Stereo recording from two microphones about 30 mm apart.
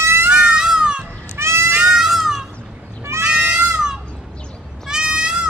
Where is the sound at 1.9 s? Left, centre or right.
Centre.